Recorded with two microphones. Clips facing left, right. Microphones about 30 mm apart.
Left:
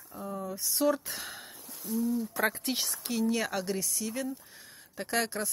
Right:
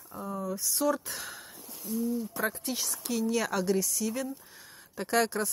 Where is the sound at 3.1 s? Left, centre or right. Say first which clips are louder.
Right 2 dB; left.